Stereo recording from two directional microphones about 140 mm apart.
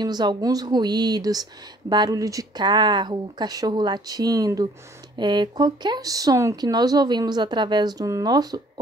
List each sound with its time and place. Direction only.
0.0 s speech: 30° right (ahead or behind)